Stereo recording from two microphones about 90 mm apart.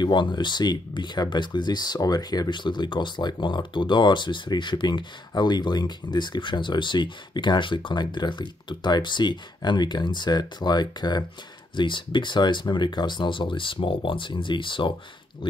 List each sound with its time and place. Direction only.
0.0 s speech: 55° left (ahead or behind)
11.7 s speech: 65° left (ahead or behind)